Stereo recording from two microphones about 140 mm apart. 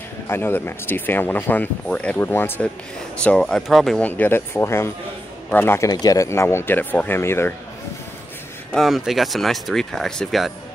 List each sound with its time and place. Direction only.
0.3 s speech: 15° left (ahead or behind)
8.7 s speech: centre (ahead or behind)